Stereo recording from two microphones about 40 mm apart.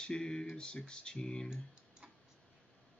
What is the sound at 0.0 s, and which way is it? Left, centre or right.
Speech, centre.